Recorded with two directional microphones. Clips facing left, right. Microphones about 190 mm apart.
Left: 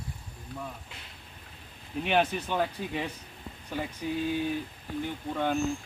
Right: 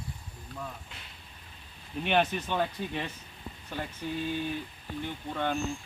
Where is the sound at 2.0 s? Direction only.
5° left (ahead or behind).